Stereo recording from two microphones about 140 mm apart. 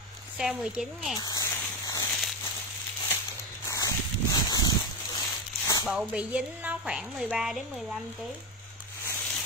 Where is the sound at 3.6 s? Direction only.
25° left (ahead or behind).